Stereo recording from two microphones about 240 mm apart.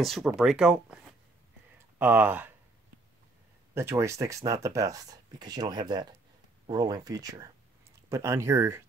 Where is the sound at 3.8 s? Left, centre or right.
Centre.